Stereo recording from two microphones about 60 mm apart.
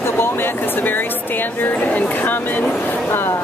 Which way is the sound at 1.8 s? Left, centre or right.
Left.